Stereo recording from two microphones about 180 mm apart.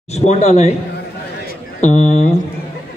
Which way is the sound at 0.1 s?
35° left (ahead or behind).